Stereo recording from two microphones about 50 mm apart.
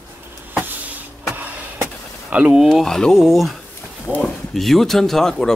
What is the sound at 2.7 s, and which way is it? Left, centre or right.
Speech, centre.